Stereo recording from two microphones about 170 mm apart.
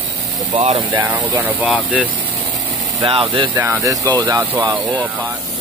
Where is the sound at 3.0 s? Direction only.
30° right (ahead or behind).